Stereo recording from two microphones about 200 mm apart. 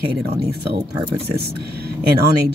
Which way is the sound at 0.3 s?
20° right (ahead or behind).